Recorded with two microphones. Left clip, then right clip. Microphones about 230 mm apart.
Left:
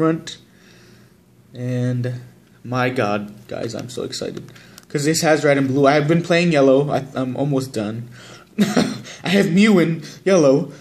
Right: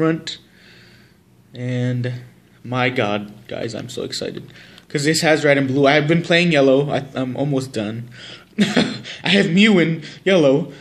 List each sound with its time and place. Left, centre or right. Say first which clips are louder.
1.5 s a man's voice: even; centre